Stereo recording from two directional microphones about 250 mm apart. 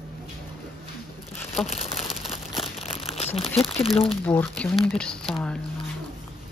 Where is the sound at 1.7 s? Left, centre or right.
Left.